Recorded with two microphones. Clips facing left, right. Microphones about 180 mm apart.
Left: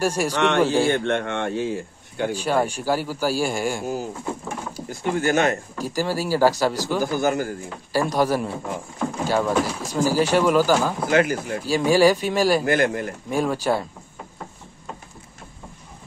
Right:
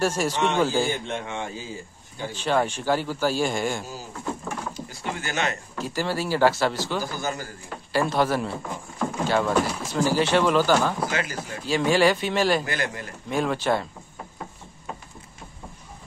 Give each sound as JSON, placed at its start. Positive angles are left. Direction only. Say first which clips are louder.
{"t": 0.0, "sound": "speech", "louder": "left 1 dB", "side_deg": 10}
{"t": 0.4, "sound": "speech", "louder": "left 4 dB", "side_deg": 75}
{"t": 2.3, "sound": "speech", "louder": "even", "side_deg": 10}
{"t": 3.8, "sound": "speech", "louder": "left 6 dB", "side_deg": 60}
{"t": 5.9, "sound": "speech", "louder": "left 2 dB", "side_deg": 10}
{"t": 7.0, "sound": "speech", "louder": "left 8 dB", "side_deg": 55}
{"t": 7.9, "sound": "speech", "louder": "left 2 dB", "side_deg": 10}
{"t": 11.1, "sound": "speech", "louder": "left 9 dB", "side_deg": 55}
{"t": 11.6, "sound": "speech", "louder": "left 3 dB", "side_deg": 10}
{"t": 12.6, "sound": "speech", "louder": "left 9 dB", "side_deg": 50}
{"t": 13.3, "sound": "speech", "louder": "left 1 dB", "side_deg": 10}